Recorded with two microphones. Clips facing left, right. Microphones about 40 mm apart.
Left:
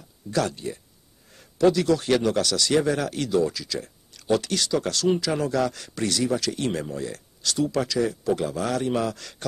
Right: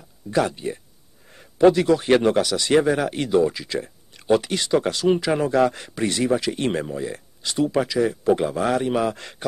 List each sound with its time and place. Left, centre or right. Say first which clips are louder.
0.3 s a man's voice: right 4 dB; right